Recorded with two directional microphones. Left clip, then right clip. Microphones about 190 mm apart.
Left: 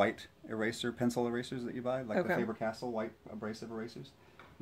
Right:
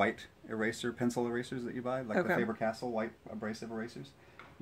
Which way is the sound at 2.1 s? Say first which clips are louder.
Right 3 dB; centre (ahead or behind).